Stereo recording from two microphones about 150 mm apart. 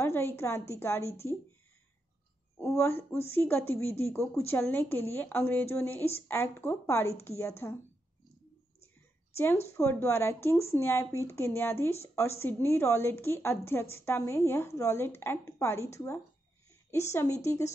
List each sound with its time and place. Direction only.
0.0 s a woman's voice: 15° left (ahead or behind)
2.6 s speech: 15° left (ahead or behind)
9.3 s a woman's voice: 15° left (ahead or behind)